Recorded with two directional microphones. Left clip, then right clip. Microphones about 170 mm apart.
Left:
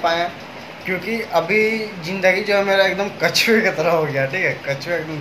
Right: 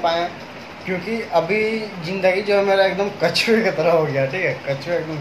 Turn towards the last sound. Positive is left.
turn(degrees=0)  # may be behind; listen again after turning